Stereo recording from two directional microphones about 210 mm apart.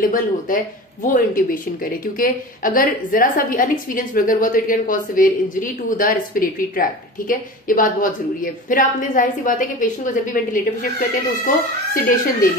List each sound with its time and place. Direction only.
0.0 s a woman's voice: 40° left (ahead or behind)